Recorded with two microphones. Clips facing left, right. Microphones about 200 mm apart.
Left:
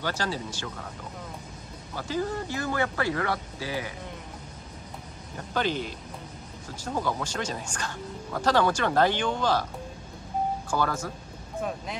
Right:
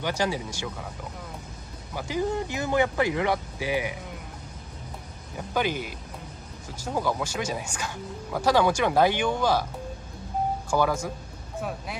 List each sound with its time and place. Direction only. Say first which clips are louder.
0.0 s speech: right 3 dB; 15° right (ahead or behind)
2.0 s speech: right 2 dB; 15° right (ahead or behind)
5.5 s speech: right 1 dB; 10° right (ahead or behind)
10.7 s speech: right 4 dB; 10° right (ahead or behind)